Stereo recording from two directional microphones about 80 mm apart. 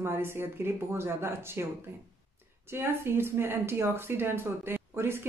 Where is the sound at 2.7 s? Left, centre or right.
Right.